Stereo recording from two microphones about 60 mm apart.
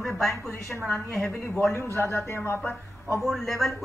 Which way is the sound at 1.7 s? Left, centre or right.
Left.